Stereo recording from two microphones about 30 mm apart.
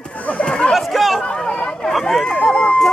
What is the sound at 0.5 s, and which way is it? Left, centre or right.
Chatter, left.